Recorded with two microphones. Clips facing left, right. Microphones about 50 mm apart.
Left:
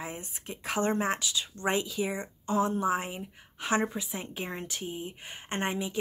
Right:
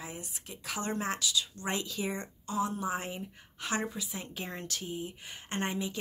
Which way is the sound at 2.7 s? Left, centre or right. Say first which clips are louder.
Left 5 dB; left.